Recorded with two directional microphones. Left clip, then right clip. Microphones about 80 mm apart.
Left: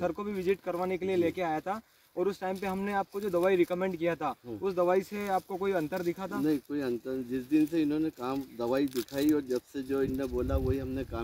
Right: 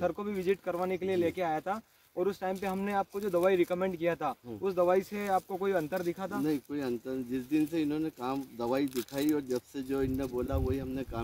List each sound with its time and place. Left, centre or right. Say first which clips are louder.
0.0 s speech: even; left
6.4 s speech: left 3 dB; right